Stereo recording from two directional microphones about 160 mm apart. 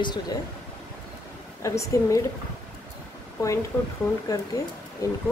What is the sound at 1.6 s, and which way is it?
Speech, 20° left (ahead or behind).